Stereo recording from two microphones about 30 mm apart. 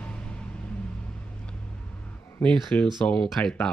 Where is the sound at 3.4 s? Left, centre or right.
Left.